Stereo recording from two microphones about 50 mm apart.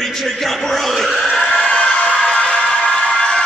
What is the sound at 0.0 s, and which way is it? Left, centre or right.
Speech, centre.